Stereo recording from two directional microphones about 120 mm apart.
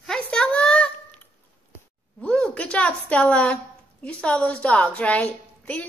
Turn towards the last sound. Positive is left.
turn(degrees=10)  # may be behind; listen again after turning